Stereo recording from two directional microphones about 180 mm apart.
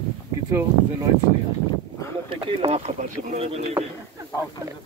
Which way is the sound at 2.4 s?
30° right (ahead or behind).